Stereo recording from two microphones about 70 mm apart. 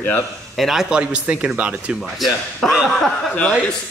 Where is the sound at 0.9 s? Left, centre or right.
Centre.